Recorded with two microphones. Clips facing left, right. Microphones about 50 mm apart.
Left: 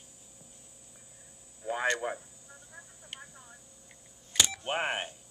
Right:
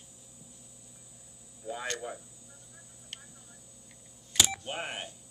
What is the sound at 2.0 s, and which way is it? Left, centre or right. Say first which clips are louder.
Speech: left 5 dB; left.